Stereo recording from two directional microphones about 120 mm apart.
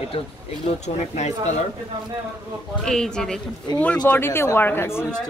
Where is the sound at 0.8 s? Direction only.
65° left (ahead or behind).